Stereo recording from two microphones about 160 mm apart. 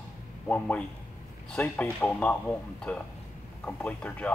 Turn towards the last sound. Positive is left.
turn(degrees=10)  # may be behind; listen again after turning